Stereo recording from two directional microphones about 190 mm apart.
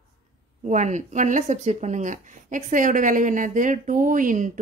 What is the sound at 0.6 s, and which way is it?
Speech, 40° right (ahead or behind).